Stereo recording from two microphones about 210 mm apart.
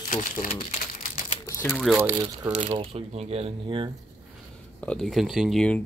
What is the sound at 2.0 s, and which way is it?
Speech, 20° right (ahead or behind).